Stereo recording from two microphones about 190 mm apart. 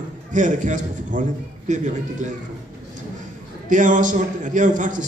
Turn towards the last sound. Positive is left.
turn(degrees=-40)  # may be behind; listen again after turning